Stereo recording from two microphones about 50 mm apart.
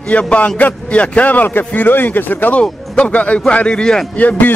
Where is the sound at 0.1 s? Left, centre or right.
Left.